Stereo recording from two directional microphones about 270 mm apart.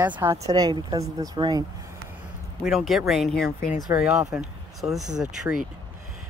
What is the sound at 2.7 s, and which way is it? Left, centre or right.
Speech, centre.